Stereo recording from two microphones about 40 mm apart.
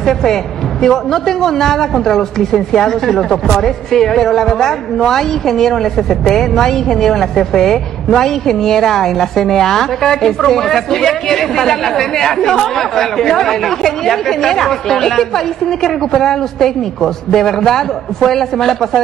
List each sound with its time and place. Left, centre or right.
0.0 s a woman's voice: centre